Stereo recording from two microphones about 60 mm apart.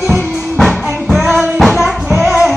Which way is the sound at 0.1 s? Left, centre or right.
Centre.